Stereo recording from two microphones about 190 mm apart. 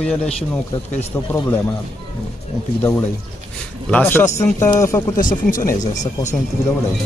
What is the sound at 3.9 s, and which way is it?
Speech, 10° left (ahead or behind).